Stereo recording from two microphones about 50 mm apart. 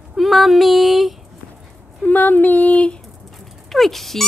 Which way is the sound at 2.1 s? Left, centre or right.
Left.